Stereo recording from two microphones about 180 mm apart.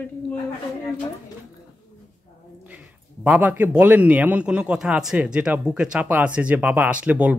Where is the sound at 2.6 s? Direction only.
10° right (ahead or behind).